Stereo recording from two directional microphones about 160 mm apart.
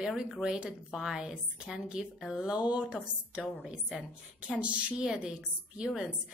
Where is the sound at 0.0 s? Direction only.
5° right (ahead or behind).